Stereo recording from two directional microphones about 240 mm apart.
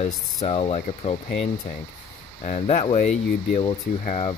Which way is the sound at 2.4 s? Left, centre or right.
Left.